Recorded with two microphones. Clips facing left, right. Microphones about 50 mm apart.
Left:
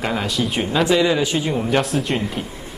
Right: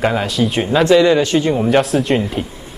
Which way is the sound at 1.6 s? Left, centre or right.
Centre.